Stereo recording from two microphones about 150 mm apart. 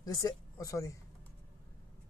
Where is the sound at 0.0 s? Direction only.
20° left (ahead or behind).